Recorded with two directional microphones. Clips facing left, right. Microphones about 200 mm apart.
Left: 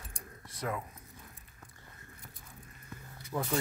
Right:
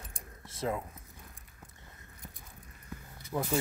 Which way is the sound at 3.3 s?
10° right (ahead or behind).